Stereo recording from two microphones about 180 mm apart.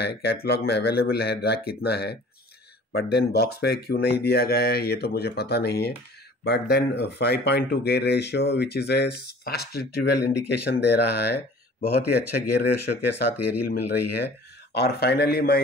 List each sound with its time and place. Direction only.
0.0 s speech: 60° left (ahead or behind)